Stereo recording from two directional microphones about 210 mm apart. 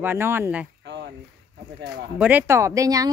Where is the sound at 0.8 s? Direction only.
55° right (ahead or behind).